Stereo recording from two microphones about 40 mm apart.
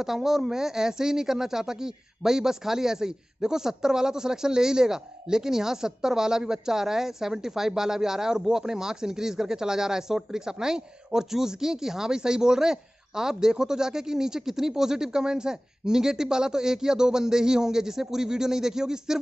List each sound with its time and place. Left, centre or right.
0.0 s speech: centre